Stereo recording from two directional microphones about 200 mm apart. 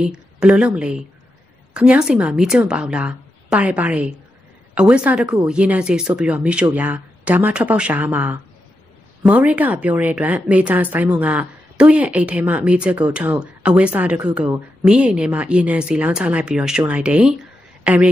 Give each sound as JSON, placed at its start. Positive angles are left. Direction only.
{"t": 0.0, "sound": "a woman's voice", "side_deg": -5}